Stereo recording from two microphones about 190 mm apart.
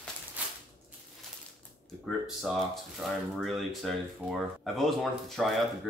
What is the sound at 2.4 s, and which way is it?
Speech, centre (ahead or behind).